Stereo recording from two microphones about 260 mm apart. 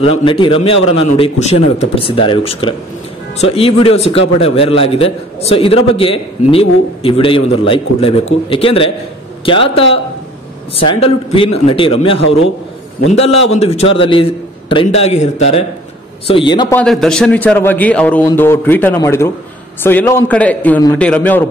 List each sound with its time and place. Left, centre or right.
0.0 s a man's voice: left
12.2 s a man's voice: left
13.5 s a man's voice: left
16.7 s a man's voice: centre